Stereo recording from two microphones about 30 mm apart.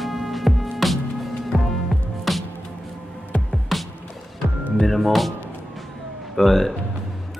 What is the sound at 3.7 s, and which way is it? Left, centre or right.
Music, centre.